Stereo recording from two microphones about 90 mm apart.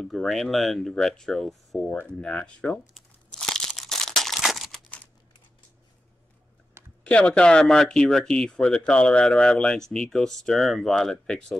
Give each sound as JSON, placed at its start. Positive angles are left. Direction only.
{"t": 0.0, "sound": "speech", "side_deg": 5}
{"t": 1.9, "sound": "speech", "side_deg": 15}
{"t": 3.3, "sound": "crunch", "side_deg": 5}
{"t": 6.8, "sound": "typing", "side_deg": -25}
{"t": 7.1, "sound": "speech", "side_deg": 15}